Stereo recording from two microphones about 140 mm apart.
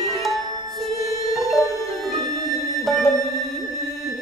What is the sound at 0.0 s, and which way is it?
Music, centre (ahead or behind).